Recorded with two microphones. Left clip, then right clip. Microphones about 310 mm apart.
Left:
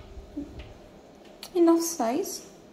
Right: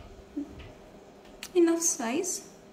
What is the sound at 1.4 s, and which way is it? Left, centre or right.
Speech, centre.